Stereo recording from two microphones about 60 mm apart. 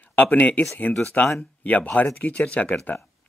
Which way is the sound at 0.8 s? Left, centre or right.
Centre.